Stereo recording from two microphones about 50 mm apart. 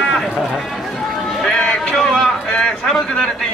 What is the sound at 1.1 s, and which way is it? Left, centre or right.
Run, centre.